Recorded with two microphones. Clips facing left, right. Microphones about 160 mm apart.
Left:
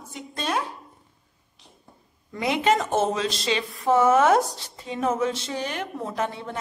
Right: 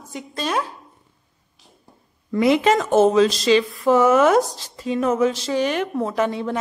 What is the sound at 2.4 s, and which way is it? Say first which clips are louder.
A woman's voice: right 5 dB; 90° right.